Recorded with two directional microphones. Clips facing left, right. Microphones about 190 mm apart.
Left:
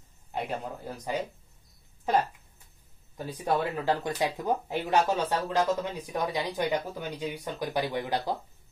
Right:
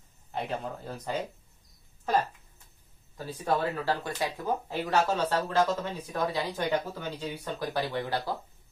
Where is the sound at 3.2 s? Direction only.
15° left (ahead or behind).